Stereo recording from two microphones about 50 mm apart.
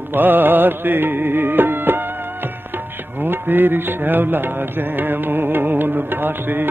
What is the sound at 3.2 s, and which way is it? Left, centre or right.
Music, right.